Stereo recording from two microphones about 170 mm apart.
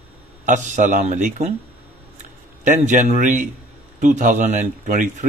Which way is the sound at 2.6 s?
45° right (ahead or behind).